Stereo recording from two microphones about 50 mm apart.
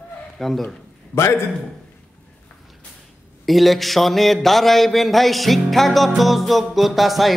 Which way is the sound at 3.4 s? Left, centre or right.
Centre.